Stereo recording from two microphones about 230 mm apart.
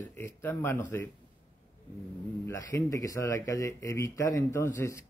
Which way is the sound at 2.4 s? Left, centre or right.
Centre.